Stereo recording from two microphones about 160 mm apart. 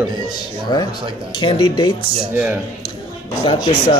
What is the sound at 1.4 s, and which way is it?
Speech, 30° left (ahead or behind).